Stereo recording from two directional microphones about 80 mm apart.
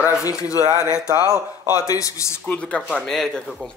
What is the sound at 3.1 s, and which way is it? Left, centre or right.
Speech, centre.